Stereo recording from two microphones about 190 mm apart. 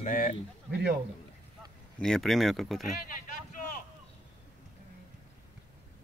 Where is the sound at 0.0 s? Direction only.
45° left (ahead or behind).